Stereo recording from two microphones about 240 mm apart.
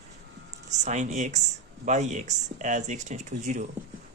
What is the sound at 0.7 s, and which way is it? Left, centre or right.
Speech, right.